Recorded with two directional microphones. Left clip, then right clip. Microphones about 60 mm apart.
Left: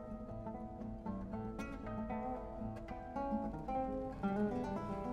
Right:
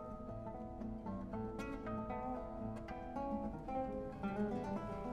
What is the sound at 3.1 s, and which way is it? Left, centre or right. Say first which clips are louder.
Music: left 3 dB; right.